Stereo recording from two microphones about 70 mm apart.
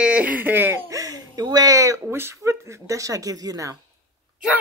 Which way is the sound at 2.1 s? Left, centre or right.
Right.